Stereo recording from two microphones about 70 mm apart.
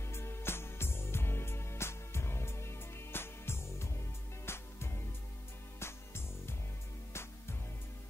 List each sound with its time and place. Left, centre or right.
0.0 s music: left